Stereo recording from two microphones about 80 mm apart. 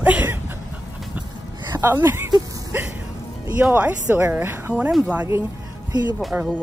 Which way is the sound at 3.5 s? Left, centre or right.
Right.